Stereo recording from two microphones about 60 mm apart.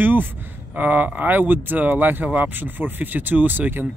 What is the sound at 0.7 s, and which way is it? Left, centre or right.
Speech, right.